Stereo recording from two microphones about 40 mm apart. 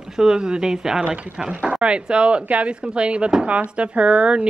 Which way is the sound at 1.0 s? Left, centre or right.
Right.